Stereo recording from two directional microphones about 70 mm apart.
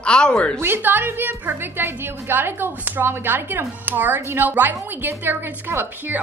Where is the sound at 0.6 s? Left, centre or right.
Right.